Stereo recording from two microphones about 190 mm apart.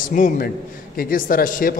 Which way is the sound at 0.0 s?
45° left (ahead or behind).